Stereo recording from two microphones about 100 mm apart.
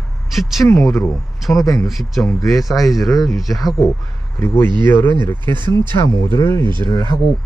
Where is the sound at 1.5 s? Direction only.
35° left (ahead or behind).